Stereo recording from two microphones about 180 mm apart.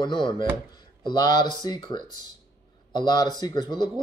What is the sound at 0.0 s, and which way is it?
Speech, 25° left (ahead or behind).